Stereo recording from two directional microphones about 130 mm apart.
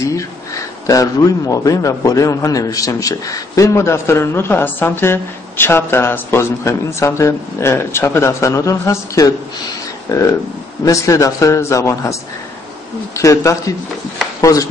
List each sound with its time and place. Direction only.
0.0 s speech: 25° left (ahead or behind)